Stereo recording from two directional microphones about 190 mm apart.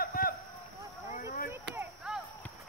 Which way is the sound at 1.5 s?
15° right (ahead or behind).